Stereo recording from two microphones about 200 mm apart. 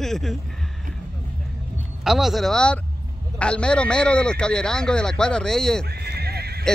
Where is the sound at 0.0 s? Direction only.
Centre (ahead or behind).